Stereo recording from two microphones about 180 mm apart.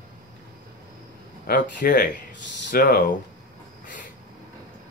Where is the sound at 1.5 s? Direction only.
50° left (ahead or behind).